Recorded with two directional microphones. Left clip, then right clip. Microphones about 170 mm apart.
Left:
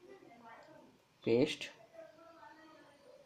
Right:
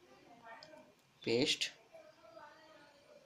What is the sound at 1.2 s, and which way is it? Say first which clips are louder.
Speech: left 1 dB; 20° left (ahead or behind).